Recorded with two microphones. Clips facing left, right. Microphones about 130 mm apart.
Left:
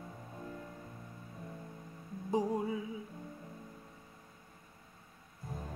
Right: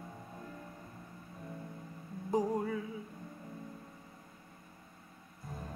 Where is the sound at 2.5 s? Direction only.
10° left (ahead or behind).